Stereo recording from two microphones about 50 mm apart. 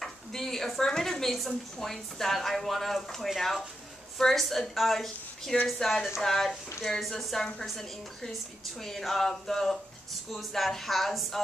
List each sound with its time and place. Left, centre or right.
0.0 s a woman's voice: centre